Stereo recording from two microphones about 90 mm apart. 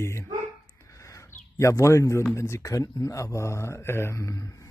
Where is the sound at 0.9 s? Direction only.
35° left (ahead or behind).